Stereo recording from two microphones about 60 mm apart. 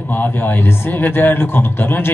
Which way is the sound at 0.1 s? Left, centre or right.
Left.